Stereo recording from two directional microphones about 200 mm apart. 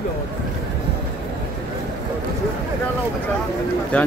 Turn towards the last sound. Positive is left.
turn(degrees=5)  # may be behind; listen again after turning